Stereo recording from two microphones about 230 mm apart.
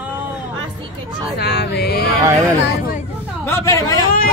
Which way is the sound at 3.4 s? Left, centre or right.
Centre.